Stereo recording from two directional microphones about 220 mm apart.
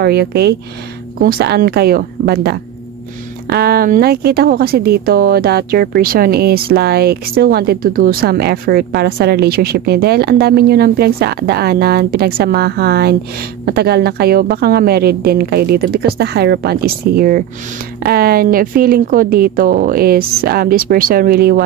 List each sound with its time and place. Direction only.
0.0 s speech: 45° right (ahead or behind)